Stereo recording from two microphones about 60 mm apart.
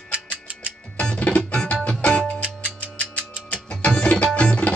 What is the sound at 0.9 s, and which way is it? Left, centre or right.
Music, centre.